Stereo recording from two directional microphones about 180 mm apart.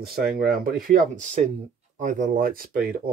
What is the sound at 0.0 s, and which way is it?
Speech, 60° right (ahead or behind).